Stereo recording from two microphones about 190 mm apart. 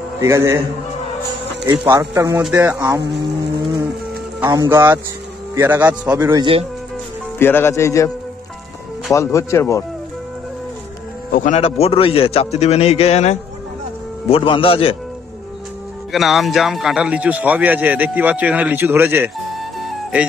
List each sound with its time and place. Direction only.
0.2 s speech: 15° right (ahead or behind)
1.7 s speech: 15° right (ahead or behind)
4.4 s speech: 15° right (ahead or behind)
7.3 s speech: 10° left (ahead or behind)
11.3 s speech: 40° left (ahead or behind)
11.6 s a man's voice: 30° left (ahead or behind)
16.1 s speech: centre (ahead or behind)